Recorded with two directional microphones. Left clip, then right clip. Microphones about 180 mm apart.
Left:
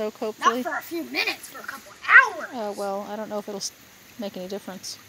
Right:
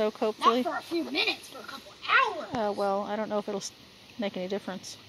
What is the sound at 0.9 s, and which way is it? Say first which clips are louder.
Speech: even; 45° left (ahead or behind).